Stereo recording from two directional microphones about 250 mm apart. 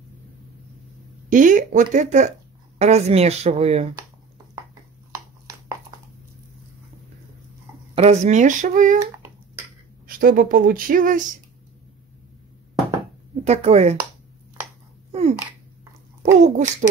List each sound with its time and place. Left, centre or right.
1.3 s speech: right
7.9 s speech: right
10.0 s speech: right
13.4 s speech: right
16.2 s speech: right